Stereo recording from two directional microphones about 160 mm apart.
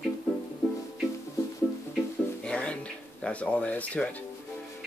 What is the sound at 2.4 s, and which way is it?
Music, 5° left (ahead or behind).